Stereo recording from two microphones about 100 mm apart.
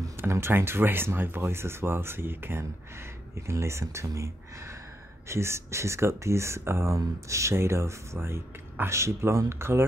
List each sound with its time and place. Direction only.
0.2 s speech: 25° right (ahead or behind)
5.3 s speech: 25° right (ahead or behind)